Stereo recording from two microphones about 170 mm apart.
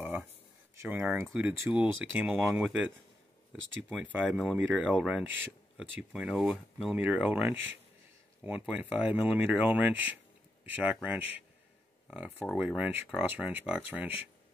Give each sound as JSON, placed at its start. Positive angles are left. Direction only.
{"t": 0.0, "sound": "a sound", "side_deg": -10}
{"t": 0.8, "sound": "speech", "side_deg": -10}
{"t": 3.5, "sound": "speech", "side_deg": -90}
{"t": 3.9, "sound": "speech", "side_deg": -10}
{"t": 12.5, "sound": "speech", "side_deg": -5}